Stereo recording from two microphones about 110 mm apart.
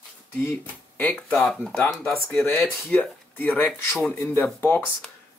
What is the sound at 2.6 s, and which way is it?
Speech, 15° left (ahead or behind).